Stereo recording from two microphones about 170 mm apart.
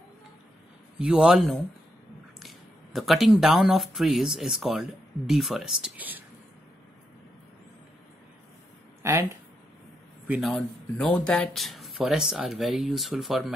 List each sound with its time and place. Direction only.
0.9 s speech: 5° right (ahead or behind)
9.0 s speech: 15° right (ahead or behind)
10.2 s speech: 5° right (ahead or behind)